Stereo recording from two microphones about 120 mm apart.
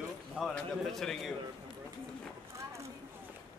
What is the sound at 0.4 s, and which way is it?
Speech, 5° left (ahead or behind).